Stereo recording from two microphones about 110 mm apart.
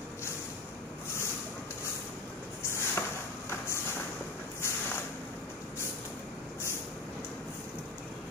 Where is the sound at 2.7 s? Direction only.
25° left (ahead or behind).